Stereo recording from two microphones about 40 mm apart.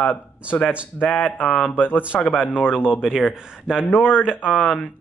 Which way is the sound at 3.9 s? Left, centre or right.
Left.